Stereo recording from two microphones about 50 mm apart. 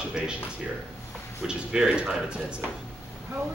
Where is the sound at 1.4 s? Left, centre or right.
Centre.